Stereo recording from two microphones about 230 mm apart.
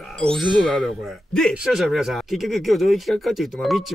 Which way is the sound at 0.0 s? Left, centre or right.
Centre.